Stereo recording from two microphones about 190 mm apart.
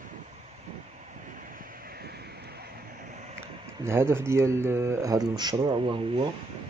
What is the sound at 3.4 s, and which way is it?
Speech, 15° right (ahead or behind).